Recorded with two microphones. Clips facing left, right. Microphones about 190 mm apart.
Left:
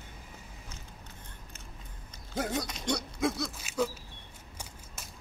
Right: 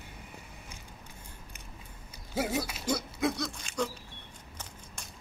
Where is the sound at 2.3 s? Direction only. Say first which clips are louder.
Right 1 dB; 5° right (ahead or behind); by 5.1 s 10° left (ahead or behind).